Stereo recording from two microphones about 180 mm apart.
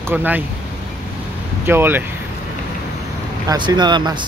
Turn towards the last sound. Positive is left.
turn(degrees=-25)  # may be behind; listen again after turning